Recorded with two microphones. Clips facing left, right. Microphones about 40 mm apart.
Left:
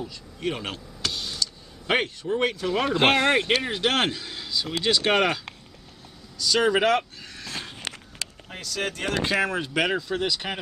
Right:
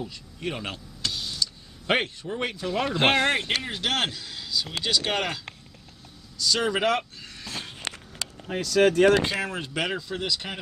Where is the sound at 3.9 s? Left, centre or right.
Left.